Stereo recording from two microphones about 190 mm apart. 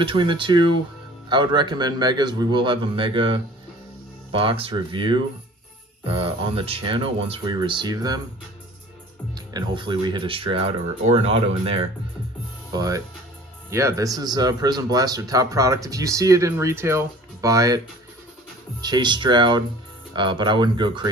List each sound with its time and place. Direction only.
0.0 s speech: 25° right (ahead or behind)
9.3 s speech: 20° right (ahead or behind)
12.7 s speech: 20° right (ahead or behind)